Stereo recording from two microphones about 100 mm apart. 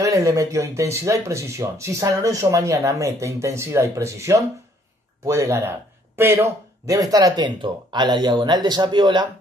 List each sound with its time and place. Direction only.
0.0 s speech: 35° right (ahead or behind)